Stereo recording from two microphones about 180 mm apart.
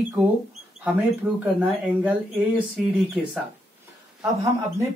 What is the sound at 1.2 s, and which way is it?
A man's voice, 10° right (ahead or behind).